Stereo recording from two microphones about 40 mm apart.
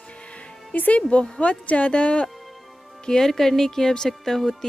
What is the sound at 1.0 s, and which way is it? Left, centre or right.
A woman's voice, left.